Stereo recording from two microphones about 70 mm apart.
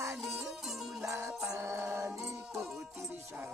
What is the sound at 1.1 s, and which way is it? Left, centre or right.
Music, right.